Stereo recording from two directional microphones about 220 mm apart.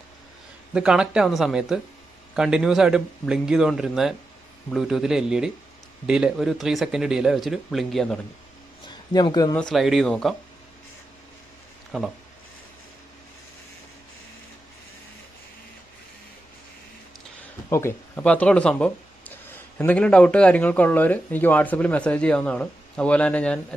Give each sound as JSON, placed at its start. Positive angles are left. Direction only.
{"t": 0.7, "sound": "speech", "side_deg": -5}
{"t": 8.8, "sound": "a man's voice", "side_deg": 20}
{"t": 9.6, "sound": "speech", "side_deg": 0}
{"t": 11.9, "sound": "speech", "side_deg": -5}
{"t": 17.6, "sound": "speech", "side_deg": 10}